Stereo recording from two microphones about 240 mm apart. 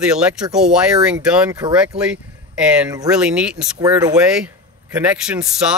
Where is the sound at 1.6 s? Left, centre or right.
Centre.